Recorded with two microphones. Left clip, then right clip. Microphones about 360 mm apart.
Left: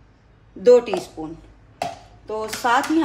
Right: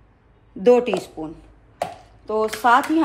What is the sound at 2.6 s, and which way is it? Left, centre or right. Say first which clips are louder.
Speech: right 2 dB; centre.